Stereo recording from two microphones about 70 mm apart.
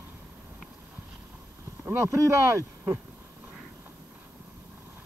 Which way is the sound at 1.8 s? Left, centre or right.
Right.